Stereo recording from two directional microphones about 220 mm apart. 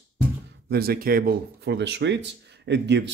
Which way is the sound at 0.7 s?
45° right (ahead or behind).